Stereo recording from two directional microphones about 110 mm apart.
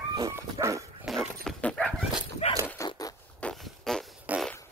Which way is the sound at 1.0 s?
5° left (ahead or behind).